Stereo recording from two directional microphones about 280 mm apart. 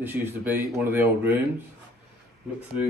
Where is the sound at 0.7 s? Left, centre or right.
Centre.